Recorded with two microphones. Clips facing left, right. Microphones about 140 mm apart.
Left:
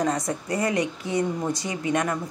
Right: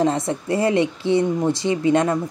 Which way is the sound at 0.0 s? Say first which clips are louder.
Right 5 dB; 25° right (ahead or behind).